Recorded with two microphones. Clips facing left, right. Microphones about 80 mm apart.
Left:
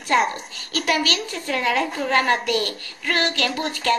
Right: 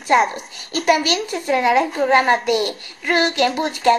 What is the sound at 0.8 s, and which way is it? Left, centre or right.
Child singing, centre.